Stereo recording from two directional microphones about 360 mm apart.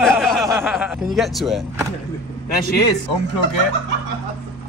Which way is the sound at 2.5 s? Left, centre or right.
Left.